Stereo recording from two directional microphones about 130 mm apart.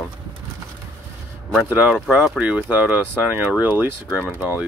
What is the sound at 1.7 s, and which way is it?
Speech, 10° right (ahead or behind).